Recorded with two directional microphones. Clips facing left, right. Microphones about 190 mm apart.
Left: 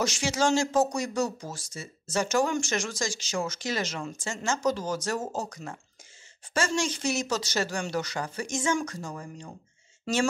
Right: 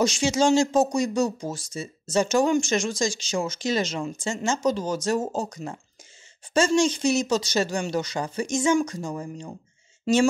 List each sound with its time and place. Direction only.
0.0 s speech: 15° right (ahead or behind)